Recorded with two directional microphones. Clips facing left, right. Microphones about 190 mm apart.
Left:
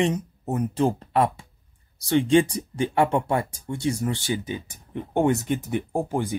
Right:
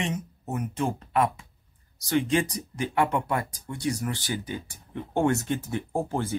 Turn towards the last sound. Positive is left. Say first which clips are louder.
# left 2 dB
turn(degrees=15)  # may be behind; listen again after turning